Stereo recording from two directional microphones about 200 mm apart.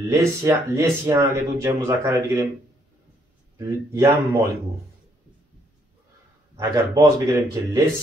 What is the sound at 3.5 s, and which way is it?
Speech, 15° right (ahead or behind).